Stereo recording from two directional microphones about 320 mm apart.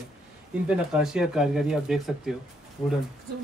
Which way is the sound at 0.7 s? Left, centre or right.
Centre.